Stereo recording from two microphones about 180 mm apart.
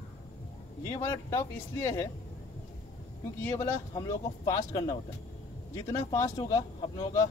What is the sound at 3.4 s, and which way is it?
Speech, 15° left (ahead or behind).